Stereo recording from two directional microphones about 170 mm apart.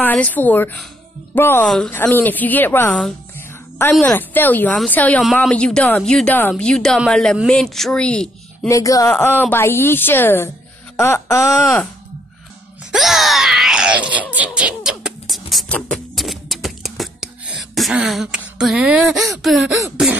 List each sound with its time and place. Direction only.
0.0 s speech: 10° left (ahead or behind)
3.3 s music: 10° left (ahead or behind)
4.0 s a woman's voice: 10° left (ahead or behind)
8.6 s speech: 20° left (ahead or behind)
12.9 s groan: centre (ahead or behind)
14.3 s beatboxing: 10° right (ahead or behind)
17.6 s throat clearing: centre (ahead or behind)
19.3 s a woman's voice: centre (ahead or behind)